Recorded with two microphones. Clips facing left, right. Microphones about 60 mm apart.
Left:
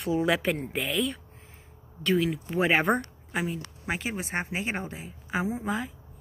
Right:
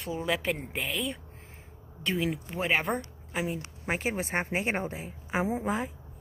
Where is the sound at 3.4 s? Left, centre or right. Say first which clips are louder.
Even; right.